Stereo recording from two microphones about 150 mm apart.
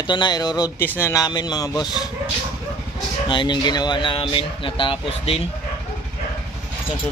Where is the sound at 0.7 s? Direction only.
15° left (ahead or behind).